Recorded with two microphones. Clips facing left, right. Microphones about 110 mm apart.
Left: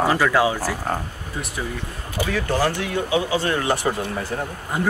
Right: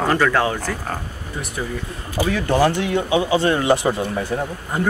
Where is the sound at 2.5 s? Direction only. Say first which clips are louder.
Right 5 dB; 20° right (ahead or behind).